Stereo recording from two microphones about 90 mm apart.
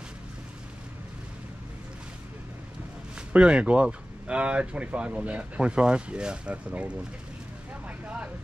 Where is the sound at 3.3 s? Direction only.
10° right (ahead or behind).